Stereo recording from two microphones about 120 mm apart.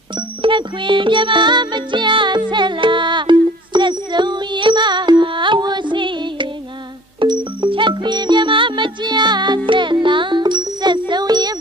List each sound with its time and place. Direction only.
0.4 s music: 45° right (ahead or behind)